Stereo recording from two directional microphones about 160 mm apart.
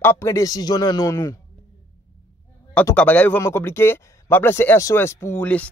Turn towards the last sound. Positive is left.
turn(degrees=10)  # may be behind; listen again after turning